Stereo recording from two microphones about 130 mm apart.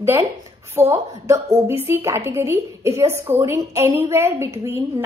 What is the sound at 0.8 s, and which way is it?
A woman's voice, 20° right (ahead or behind).